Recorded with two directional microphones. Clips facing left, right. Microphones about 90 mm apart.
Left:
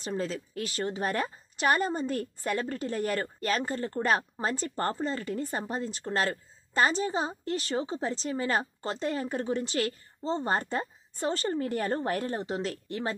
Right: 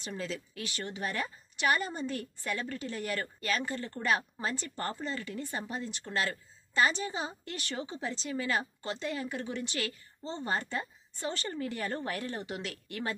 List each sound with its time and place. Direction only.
0.0 s a woman's voice: 40° left (ahead or behind)